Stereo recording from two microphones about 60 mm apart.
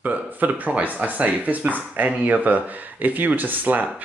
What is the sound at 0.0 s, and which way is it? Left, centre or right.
Speech, right.